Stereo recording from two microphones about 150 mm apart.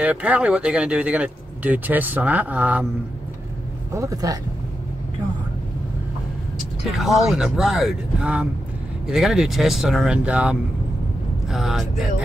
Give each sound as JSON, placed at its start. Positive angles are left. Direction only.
{"t": 0.0, "sound": "speech", "side_deg": -10}
{"t": 3.9, "sound": "speech", "side_deg": -20}
{"t": 6.9, "sound": "speech", "side_deg": 0}